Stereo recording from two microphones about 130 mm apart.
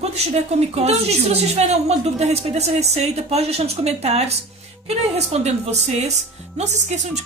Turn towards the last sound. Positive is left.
turn(degrees=-60)  # may be behind; listen again after turning